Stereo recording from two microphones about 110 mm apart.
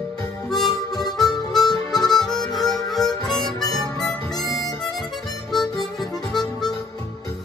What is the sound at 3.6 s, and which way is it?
Harmonica, 35° left (ahead or behind).